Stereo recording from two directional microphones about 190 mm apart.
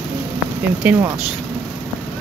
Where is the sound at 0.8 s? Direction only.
15° right (ahead or behind).